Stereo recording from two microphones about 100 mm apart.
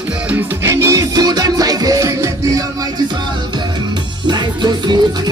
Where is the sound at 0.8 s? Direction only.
40° right (ahead or behind).